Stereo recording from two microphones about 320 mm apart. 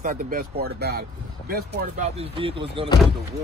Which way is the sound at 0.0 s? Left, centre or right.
Right.